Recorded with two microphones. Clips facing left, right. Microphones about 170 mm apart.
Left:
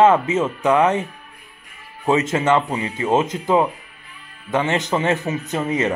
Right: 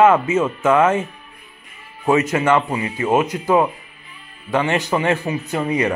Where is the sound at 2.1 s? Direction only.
20° left (ahead or behind).